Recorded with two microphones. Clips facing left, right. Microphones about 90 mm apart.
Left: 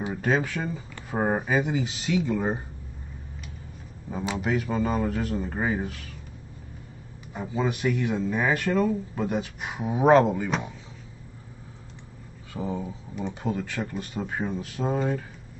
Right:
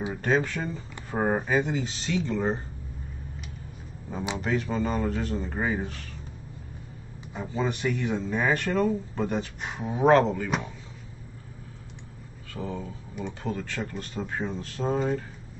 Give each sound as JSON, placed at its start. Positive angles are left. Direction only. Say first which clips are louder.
{"t": 0.0, "sound": "speech", "louder": "even", "side_deg": 5}
{"t": 4.4, "sound": "speech", "louder": "left 1 dB", "side_deg": 5}
{"t": 7.3, "sound": "speech", "louder": "left 1 dB", "side_deg": 5}
{"t": 12.5, "sound": "speech", "louder": "left 3 dB", "side_deg": 15}